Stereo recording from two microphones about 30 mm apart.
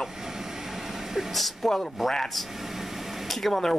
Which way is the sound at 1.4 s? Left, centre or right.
Centre.